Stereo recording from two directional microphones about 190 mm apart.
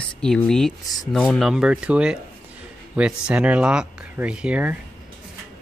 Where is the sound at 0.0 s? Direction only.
5° left (ahead or behind).